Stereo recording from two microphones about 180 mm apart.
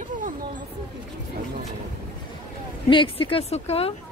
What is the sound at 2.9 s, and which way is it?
Speech, 30° left (ahead or behind).